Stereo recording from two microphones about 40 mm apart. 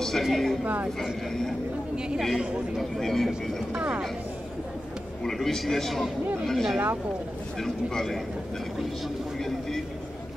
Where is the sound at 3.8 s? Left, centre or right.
Right.